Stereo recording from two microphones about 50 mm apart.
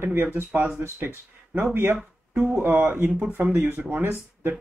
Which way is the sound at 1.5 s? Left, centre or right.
Right.